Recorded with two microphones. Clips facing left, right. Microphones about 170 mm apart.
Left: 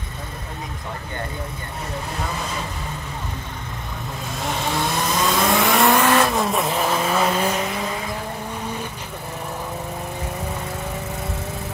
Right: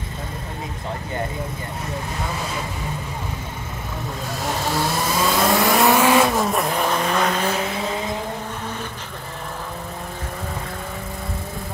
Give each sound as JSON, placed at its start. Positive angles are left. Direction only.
{"t": 4.4, "sound": "vehicle", "side_deg": 0}